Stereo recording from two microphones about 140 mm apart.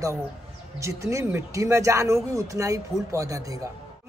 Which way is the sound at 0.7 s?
20° right (ahead or behind).